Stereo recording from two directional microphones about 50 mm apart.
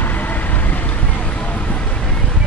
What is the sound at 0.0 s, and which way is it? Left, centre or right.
Vehicle, left.